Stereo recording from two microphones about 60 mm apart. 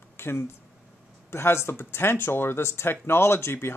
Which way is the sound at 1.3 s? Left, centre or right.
Left.